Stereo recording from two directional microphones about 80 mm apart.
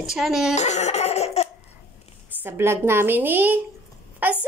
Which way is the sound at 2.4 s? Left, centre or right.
Right.